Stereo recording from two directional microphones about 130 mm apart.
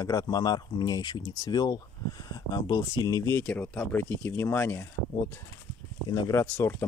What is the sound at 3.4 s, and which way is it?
Speech, 10° left (ahead or behind).